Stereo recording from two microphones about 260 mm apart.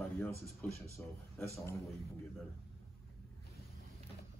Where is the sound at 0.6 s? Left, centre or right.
Centre.